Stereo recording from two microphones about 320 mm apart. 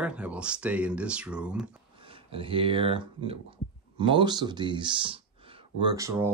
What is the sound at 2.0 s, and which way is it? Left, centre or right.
Speech, centre.